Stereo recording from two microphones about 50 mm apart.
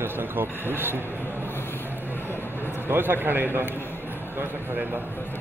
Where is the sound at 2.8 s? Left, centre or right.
Right.